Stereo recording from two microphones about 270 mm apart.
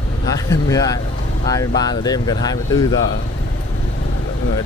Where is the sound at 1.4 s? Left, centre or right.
Centre.